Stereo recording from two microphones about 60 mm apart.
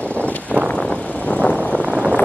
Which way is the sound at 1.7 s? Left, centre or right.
Right.